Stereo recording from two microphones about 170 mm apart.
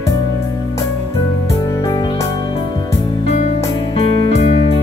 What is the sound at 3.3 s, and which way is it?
Music, 40° left (ahead or behind).